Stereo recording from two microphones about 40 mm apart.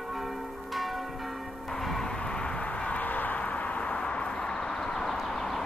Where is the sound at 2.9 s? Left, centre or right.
Left.